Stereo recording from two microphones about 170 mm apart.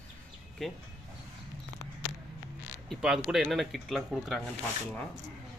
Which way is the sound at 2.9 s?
5° right (ahead or behind).